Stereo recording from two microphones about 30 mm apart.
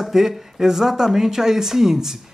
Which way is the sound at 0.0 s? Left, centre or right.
Centre.